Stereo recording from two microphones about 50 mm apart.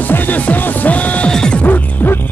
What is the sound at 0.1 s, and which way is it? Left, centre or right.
Music, left.